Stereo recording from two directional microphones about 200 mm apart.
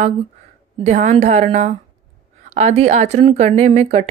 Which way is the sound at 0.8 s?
35° right (ahead or behind).